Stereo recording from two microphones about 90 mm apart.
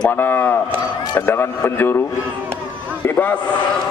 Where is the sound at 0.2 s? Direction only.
20° left (ahead or behind).